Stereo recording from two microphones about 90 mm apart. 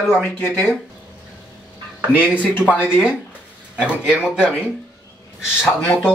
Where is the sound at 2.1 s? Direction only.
20° right (ahead or behind).